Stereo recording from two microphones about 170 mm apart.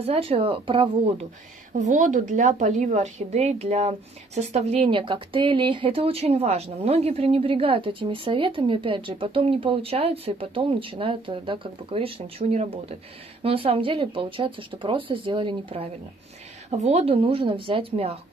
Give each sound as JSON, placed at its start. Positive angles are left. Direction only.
{"t": 0.0, "sound": "a woman's voice", "side_deg": -35}
{"t": 1.7, "sound": "a woman's voice", "side_deg": -45}